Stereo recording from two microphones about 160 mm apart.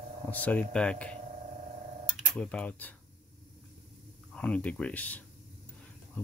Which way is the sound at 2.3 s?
10° left (ahead or behind).